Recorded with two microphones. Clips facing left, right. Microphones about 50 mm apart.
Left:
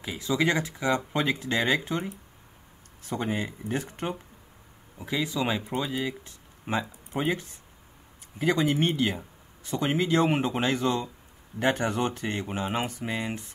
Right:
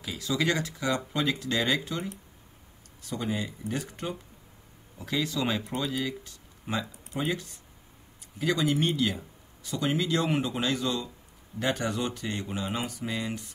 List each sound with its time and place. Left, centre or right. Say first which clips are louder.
0.0 s speech: left 3 dB; left
4.9 s speech: left 1 dB; centre